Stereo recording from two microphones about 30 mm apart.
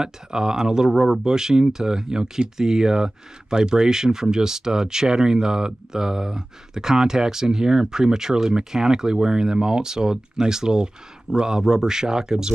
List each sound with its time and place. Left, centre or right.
0.0 s speech: right